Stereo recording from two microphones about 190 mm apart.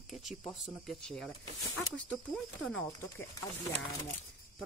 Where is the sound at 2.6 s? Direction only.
10° left (ahead or behind).